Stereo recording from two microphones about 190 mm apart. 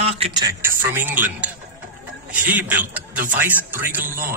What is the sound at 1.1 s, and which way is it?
Speech, 10° right (ahead or behind).